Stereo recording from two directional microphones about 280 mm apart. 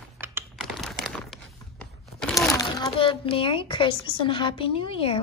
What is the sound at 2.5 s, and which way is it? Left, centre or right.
A child's voice, centre.